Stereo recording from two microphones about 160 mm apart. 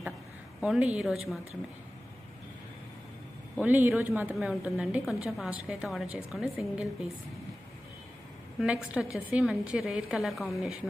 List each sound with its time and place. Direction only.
0.6 s a woman's voice: 5° right (ahead or behind)
3.5 s a woman's voice: 10° right (ahead or behind)
8.5 s a woman's voice: 5° right (ahead or behind)